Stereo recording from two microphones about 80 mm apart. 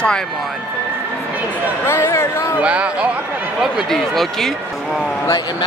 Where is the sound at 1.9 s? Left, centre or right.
Left.